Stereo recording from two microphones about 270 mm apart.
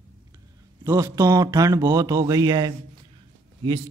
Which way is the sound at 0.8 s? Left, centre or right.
Centre.